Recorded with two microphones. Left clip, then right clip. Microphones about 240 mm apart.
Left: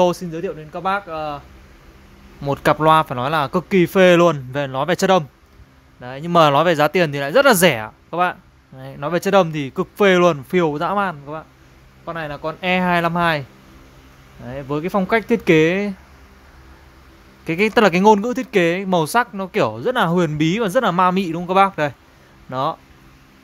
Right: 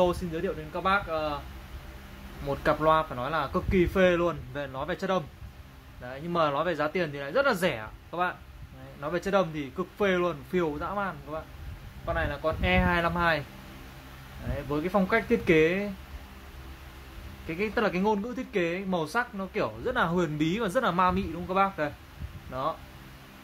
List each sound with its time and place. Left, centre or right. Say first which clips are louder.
0.0 s speech: left 8 dB; left
2.4 s speech: left 9 dB; left
14.5 s speech: left 7 dB; left
17.5 s speech: left 13 dB; left